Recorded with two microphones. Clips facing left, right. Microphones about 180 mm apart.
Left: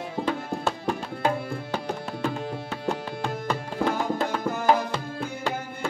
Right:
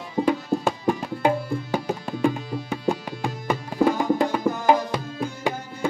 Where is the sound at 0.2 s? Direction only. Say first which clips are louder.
Right 6 dB; 15° right (ahead or behind).